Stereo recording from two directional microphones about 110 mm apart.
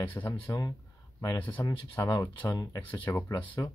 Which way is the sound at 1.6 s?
30° left (ahead or behind).